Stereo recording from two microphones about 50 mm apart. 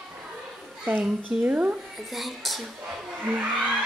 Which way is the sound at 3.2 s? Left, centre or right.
Right.